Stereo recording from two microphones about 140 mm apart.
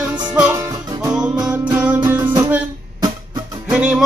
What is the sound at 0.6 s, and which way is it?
Music, 25° right (ahead or behind).